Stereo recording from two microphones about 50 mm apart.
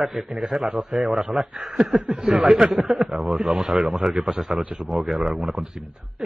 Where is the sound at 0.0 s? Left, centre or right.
Centre.